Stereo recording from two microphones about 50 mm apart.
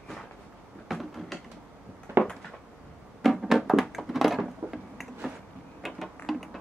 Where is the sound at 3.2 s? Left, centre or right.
Centre.